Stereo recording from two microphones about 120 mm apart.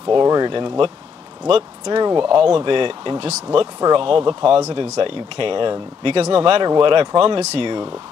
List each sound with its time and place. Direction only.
0.1 s speech: 35° right (ahead or behind)
4.6 s speech: 65° right (ahead or behind)